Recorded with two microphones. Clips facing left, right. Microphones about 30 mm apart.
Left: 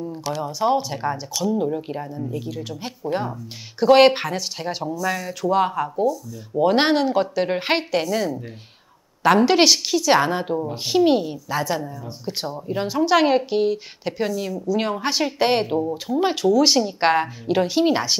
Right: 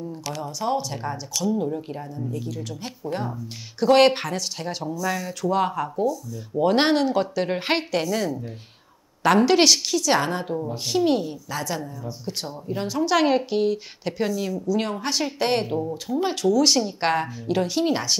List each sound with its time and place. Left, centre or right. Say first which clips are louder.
0.0 s speech: left 4 dB; centre